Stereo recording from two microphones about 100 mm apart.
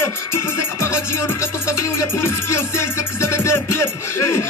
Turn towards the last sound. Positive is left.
turn(degrees=25)  # may be behind; listen again after turning